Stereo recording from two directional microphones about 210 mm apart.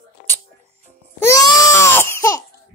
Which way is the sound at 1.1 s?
15° left (ahead or behind).